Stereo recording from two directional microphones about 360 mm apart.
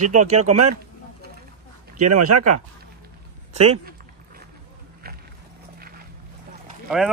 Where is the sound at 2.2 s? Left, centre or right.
Right.